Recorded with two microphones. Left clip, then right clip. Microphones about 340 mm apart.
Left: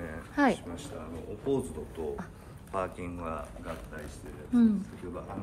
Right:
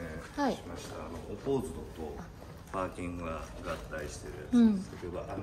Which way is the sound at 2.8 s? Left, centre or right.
Left.